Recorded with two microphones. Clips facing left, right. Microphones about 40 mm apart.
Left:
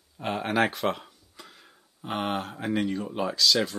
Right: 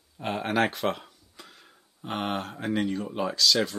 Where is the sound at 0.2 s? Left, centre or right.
Centre.